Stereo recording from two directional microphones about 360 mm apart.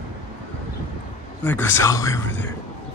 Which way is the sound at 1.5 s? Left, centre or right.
Centre.